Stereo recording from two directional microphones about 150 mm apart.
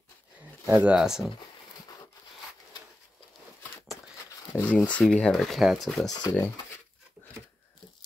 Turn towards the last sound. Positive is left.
turn(degrees=25)  # may be behind; listen again after turning